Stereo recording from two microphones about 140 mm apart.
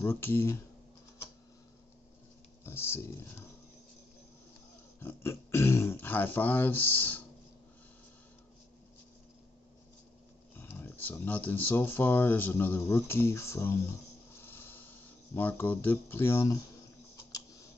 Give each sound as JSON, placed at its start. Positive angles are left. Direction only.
{"t": 0.0, "sound": "speech", "side_deg": 15}
{"t": 2.6, "sound": "speech", "side_deg": 15}
{"t": 5.0, "sound": "speech", "side_deg": 15}
{"t": 10.5, "sound": "speech", "side_deg": 15}
{"t": 14.3, "sound": "a sound", "side_deg": 15}
{"t": 17.3, "sound": "typing", "side_deg": 25}